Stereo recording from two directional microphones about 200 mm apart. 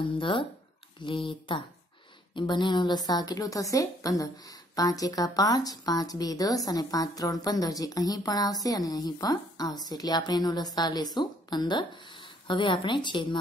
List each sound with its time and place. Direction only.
0.2 s a woman's voice: 25° left (ahead or behind)